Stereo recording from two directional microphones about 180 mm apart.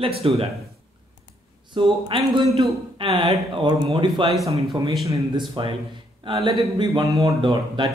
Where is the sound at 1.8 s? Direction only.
25° right (ahead or behind).